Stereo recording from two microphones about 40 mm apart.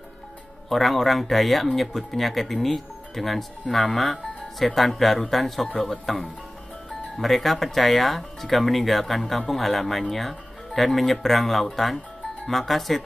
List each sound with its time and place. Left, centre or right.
0.7 s speech: centre